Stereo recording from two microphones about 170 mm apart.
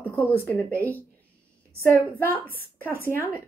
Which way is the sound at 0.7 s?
15° right (ahead or behind).